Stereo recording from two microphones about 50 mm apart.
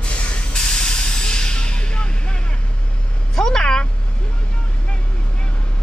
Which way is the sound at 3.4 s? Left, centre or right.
Centre.